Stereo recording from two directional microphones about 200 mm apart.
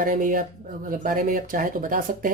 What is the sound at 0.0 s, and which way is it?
Speech, 45° right (ahead or behind).